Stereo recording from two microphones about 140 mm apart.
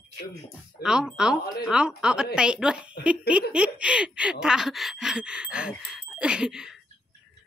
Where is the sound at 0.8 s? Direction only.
5° right (ahead or behind).